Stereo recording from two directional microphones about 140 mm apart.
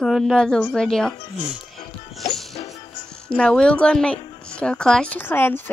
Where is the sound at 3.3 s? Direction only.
5° left (ahead or behind).